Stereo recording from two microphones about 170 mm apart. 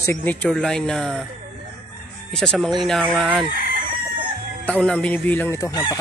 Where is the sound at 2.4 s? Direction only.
5° left (ahead or behind).